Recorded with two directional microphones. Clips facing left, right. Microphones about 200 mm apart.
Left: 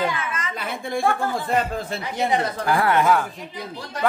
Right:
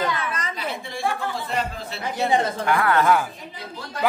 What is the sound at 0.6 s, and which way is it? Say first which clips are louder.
A woman's voice: left 3 dB; 50° left (ahead or behind).